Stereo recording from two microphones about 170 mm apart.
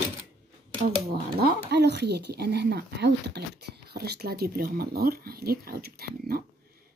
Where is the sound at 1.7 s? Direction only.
80° right.